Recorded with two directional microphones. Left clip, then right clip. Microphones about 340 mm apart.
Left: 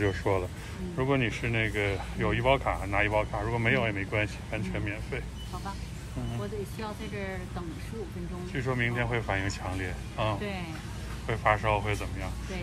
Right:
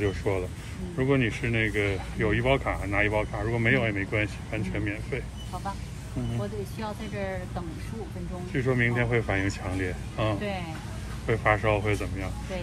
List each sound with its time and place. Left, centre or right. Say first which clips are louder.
0.0 s speech: even; centre
6.8 s speech: right 3 dB; centre